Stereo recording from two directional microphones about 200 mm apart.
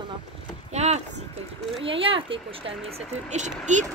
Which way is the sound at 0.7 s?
35° right (ahead or behind).